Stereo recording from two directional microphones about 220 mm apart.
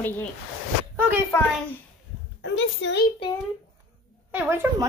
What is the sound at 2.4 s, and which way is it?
Speech, 55° left (ahead or behind).